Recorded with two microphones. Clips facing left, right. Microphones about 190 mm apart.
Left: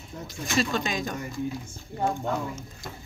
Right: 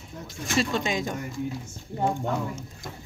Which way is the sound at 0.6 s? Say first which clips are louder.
Right 1 dB; 25° right (ahead or behind).